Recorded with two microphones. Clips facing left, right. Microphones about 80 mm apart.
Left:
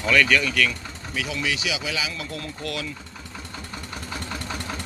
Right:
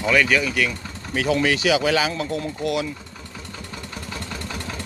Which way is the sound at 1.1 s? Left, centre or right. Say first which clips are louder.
Right 8 dB; right.